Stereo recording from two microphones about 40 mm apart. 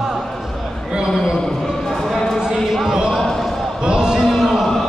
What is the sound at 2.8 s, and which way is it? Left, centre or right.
Basketball bounce, centre.